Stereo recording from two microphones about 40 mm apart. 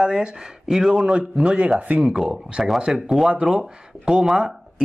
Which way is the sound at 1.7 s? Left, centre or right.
Right.